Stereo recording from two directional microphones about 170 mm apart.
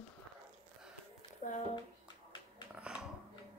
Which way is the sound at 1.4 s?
45° left (ahead or behind).